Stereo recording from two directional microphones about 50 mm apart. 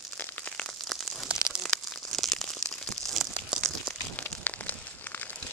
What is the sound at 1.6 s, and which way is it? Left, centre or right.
Crumpling, centre.